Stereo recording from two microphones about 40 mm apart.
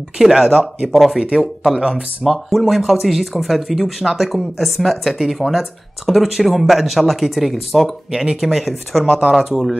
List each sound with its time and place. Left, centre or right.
0.2 s speech: centre
1.2 s speech: right
2.2 s speech: centre